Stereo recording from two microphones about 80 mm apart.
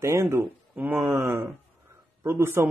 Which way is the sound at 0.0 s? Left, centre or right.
Right.